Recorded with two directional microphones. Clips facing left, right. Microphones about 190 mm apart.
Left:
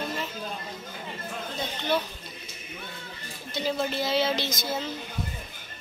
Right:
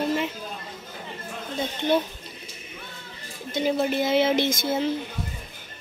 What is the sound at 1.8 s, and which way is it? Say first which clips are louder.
Speech: right 5 dB; 20° right (ahead or behind).